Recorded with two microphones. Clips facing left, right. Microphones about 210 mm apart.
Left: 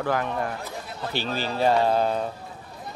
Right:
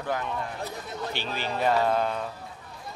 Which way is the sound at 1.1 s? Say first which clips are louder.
Left 6 dB; 35° left (ahead or behind).